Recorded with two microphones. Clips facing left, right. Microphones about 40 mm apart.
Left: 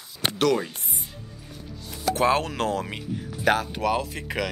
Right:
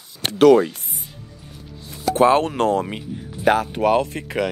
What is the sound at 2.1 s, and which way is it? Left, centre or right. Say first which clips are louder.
Speech: right 7 dB; right.